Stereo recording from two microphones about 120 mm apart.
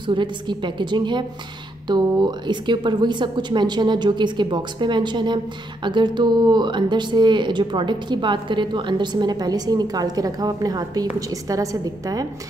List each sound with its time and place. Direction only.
0.0 s speech: 40° right (ahead or behind)